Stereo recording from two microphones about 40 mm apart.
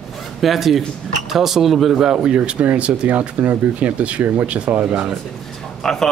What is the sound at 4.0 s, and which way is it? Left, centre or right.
Speech, right.